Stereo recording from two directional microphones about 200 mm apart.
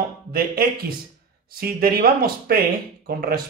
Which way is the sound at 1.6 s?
50° right (ahead or behind).